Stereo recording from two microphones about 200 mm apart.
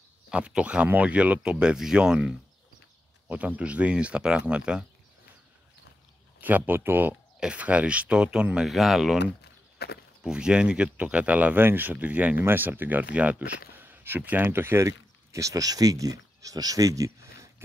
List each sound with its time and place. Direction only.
0.3 s speech: 5° right (ahead or behind)
6.4 s speech: 10° right (ahead or behind)
9.2 s a sound: 55° left (ahead or behind)
10.2 s speech: 5° right (ahead or behind)